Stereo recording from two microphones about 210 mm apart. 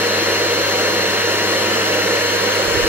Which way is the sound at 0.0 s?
10° right (ahead or behind).